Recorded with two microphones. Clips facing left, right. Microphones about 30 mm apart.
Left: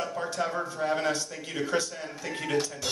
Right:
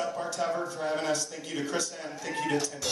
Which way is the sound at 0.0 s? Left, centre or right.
Centre.